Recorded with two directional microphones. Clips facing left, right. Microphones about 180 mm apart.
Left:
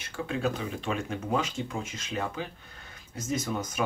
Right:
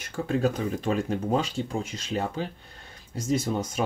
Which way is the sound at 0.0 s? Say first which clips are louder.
Right 5 dB; 40° right (ahead or behind).